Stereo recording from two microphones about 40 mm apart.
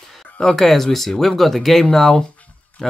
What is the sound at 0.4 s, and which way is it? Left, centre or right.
Speech, centre.